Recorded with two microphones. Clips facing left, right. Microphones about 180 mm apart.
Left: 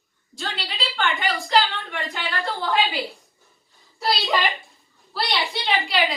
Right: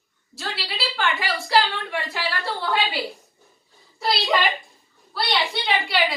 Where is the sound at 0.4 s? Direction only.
5° right (ahead or behind).